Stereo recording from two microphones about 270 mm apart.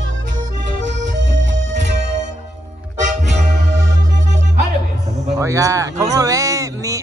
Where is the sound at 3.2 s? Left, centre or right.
Right.